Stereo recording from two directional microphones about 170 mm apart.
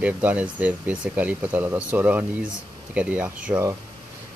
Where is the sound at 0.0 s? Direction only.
10° right (ahead or behind).